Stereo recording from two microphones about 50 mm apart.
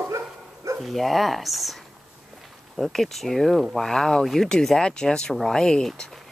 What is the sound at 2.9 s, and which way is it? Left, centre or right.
Speech, centre.